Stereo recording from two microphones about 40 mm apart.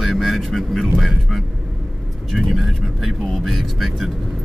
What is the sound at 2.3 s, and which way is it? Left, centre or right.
Speech, centre.